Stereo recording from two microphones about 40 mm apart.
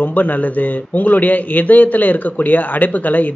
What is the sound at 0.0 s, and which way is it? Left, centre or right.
A man's voice, left.